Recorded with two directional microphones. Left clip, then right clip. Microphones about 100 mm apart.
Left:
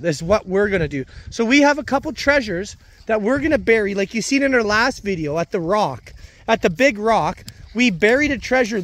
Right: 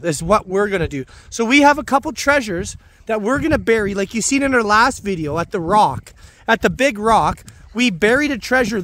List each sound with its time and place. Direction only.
0.0 s speech: 30° right (ahead or behind)
3.3 s speech: 25° right (ahead or behind)
4.4 s speech: 35° right (ahead or behind)
6.4 s speech: 40° right (ahead or behind)